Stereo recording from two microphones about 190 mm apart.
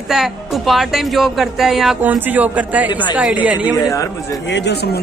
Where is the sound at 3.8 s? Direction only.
15° left (ahead or behind).